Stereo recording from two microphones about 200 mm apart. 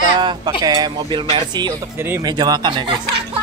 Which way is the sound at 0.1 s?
20° right (ahead or behind).